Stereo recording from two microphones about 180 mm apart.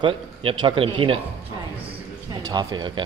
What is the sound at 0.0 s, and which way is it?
Speech, 30° right (ahead or behind).